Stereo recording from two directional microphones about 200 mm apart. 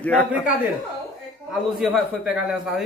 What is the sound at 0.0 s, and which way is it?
Speech, 5° left (ahead or behind).